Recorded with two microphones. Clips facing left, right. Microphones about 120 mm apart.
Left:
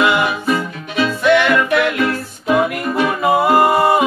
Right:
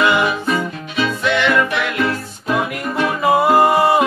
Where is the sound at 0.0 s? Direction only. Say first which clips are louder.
Even; centre (ahead or behind).